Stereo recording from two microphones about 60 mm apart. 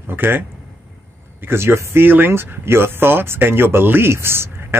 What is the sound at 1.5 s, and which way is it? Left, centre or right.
Speech, right.